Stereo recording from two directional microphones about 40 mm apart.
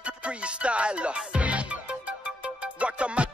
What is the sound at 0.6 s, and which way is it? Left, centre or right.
Music, right.